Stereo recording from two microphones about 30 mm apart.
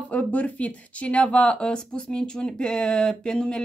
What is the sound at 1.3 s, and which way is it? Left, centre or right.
Speech, left.